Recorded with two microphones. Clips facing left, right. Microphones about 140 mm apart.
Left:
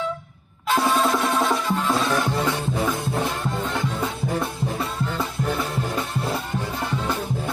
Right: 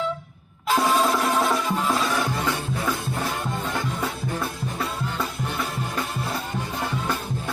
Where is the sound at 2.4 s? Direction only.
25° left (ahead or behind).